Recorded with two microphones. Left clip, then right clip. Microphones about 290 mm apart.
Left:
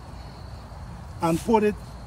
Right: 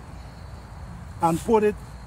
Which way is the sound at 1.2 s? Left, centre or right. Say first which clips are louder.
Right 1 dB; centre.